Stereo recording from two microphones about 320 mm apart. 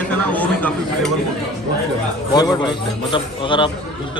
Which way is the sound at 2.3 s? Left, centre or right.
Centre.